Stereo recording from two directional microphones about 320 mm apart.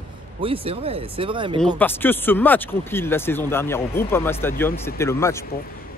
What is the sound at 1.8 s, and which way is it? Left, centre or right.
Speech, centre.